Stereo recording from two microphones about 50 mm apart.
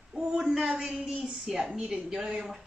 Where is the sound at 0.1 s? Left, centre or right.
Centre.